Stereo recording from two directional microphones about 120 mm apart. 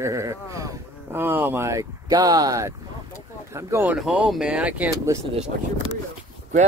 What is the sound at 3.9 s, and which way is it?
Speech, 5° right (ahead or behind).